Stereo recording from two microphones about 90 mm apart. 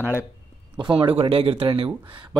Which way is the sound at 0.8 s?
65° right (ahead or behind).